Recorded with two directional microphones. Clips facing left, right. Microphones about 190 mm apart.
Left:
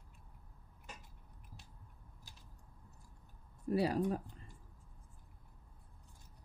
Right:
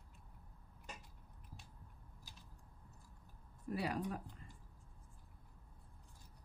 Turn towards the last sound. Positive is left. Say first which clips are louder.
# left 7 dB
turn(degrees=30)  # may be behind; listen again after turning